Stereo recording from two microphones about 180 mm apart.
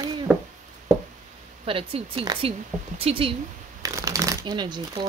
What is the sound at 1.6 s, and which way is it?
Speech, 30° right (ahead or behind).